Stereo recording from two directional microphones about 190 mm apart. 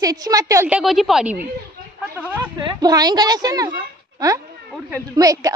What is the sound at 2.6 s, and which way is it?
A woman's voice, 20° right (ahead or behind).